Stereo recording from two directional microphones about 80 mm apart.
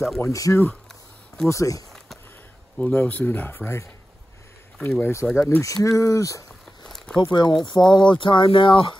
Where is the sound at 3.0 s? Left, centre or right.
Left.